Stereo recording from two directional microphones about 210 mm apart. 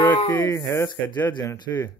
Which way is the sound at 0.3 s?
10° left (ahead or behind).